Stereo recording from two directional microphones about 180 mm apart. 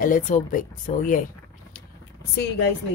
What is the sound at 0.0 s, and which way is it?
A woman's voice, 50° left (ahead or behind).